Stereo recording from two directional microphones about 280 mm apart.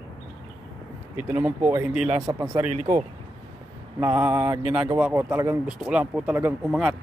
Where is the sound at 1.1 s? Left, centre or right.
Centre.